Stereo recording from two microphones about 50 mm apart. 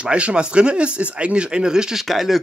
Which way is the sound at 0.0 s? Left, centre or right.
Right.